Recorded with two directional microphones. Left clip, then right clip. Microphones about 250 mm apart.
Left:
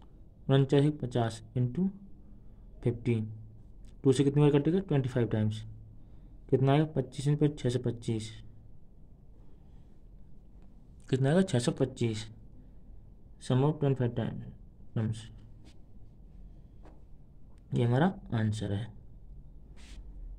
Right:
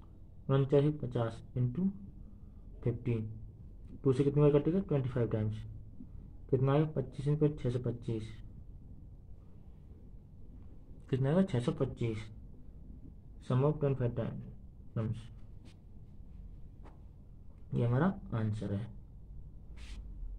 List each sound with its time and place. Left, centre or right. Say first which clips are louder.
0.5 s speech: left 3 dB; left
11.1 s speech: left 4 dB; left
13.5 s speech: left 3 dB; left
17.6 s speech: left 4 dB; left